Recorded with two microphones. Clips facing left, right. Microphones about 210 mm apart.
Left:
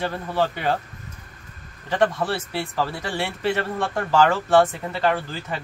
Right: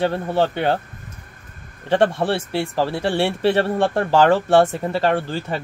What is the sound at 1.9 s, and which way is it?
Speech, 30° right (ahead or behind).